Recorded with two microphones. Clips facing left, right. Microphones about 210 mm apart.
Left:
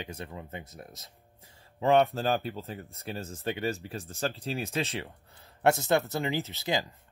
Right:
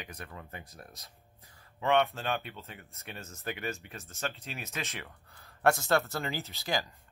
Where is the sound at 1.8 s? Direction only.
35° left (ahead or behind).